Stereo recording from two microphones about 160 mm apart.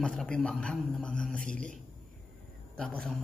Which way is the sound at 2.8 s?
5° left (ahead or behind).